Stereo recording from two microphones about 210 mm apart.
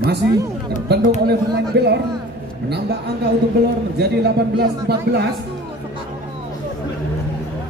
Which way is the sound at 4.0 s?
50° right (ahead or behind).